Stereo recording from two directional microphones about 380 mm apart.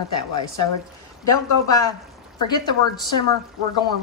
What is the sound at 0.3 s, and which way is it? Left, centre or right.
Speech, left.